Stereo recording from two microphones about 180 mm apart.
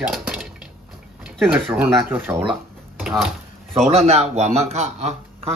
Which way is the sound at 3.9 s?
35° right (ahead or behind).